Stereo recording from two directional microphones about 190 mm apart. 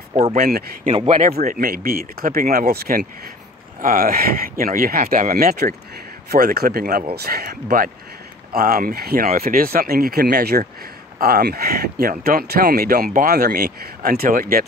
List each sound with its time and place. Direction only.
0.2 s speech: 40° right (ahead or behind)
1.2 s speech: 45° right (ahead or behind)